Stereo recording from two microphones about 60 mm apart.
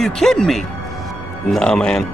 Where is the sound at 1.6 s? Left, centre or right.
Centre.